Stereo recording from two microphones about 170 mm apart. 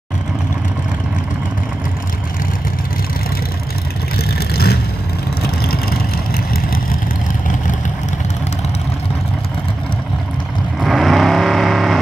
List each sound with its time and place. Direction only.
4.2 s vehicle: 65° left (ahead or behind)
10.8 s vehicle: centre (ahead or behind)